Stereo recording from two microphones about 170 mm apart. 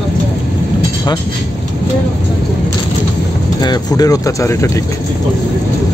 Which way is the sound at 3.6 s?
25° left (ahead or behind).